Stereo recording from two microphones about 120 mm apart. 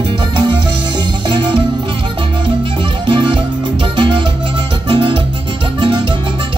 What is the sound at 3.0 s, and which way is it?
Music, 45° right (ahead or behind).